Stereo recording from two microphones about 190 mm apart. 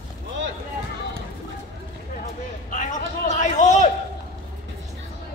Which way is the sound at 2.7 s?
40° left (ahead or behind).